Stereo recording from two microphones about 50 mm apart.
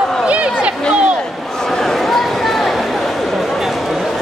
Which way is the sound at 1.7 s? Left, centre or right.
Centre.